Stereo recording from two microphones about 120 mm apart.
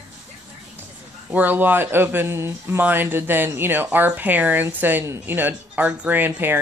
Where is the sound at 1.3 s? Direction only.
15° right (ahead or behind).